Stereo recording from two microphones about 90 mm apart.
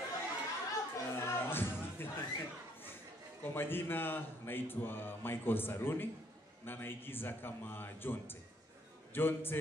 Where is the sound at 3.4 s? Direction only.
25° left (ahead or behind).